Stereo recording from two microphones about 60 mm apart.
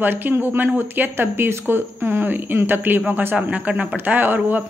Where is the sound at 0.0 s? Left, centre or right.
Right.